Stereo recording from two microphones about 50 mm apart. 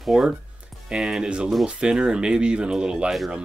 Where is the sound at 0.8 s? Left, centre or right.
Centre.